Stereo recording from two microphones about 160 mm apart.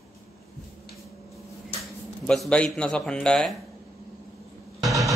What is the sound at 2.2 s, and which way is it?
Speech, 5° left (ahead or behind).